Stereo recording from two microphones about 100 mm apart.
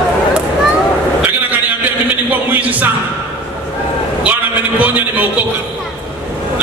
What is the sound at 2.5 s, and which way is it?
Music, 15° right (ahead or behind).